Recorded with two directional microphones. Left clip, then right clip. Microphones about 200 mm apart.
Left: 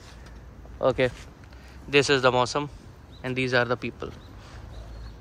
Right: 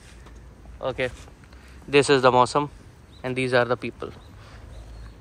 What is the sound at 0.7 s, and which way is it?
Speech, 20° left (ahead or behind).